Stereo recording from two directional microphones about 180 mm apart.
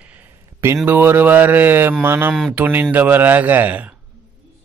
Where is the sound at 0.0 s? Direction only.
10° right (ahead or behind).